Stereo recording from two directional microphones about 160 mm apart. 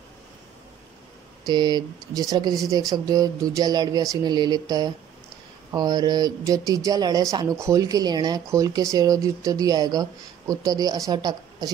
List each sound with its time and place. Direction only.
1.4 s speech: 25° right (ahead or behind)